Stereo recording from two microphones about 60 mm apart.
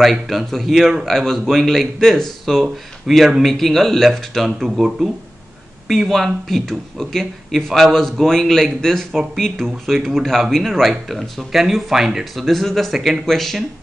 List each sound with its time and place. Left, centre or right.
0.0 s speech: centre
4.6 s speech: centre
5.9 s speech: centre
12.4 s speech: centre